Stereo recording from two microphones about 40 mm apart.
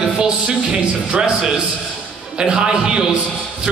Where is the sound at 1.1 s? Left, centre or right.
Centre.